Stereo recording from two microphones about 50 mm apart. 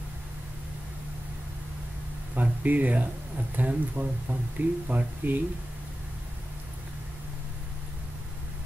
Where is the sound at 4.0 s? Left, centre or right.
Right.